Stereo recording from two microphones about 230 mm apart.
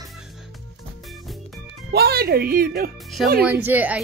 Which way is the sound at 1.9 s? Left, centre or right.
Right.